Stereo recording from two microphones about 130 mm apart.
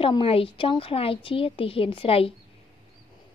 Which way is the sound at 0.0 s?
45° left (ahead or behind).